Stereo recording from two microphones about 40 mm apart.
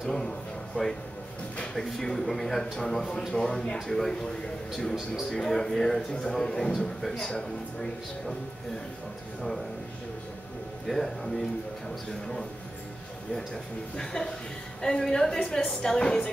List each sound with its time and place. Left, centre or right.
0.8 s a woman's voice: left
1.8 s speech: centre
5.3 s speech: centre
7.0 s a man's voice: centre
7.2 s speech: centre
10.9 s speech: centre
13.9 s a woman's voice: centre